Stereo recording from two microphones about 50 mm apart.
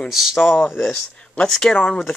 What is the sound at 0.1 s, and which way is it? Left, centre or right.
Speech, centre.